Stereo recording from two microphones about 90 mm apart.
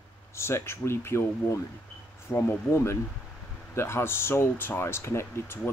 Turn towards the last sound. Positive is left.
turn(degrees=30)  # may be behind; listen again after turning